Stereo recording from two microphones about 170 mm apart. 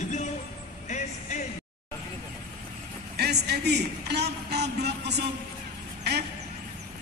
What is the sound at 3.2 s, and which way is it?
A man's voice, 75° right (ahead or behind).